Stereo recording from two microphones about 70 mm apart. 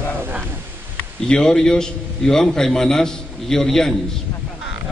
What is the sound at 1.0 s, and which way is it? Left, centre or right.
A man's voice, centre.